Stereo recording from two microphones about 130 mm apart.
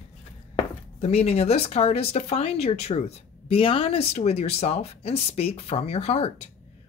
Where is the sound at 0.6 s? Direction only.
50° left (ahead or behind).